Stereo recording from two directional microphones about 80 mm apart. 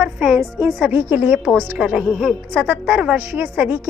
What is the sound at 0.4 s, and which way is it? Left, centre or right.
A woman's voice, right.